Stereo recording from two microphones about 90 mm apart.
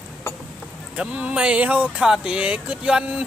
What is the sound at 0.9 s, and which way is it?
Speech, 15° right (ahead or behind).